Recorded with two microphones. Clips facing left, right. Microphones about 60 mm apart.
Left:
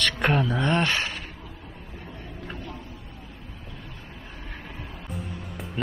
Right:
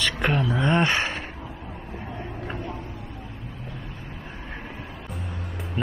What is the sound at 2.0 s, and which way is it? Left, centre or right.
Vehicle, right.